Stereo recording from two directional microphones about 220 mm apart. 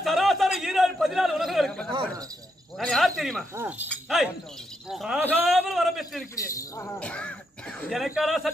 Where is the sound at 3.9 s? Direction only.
Centre (ahead or behind).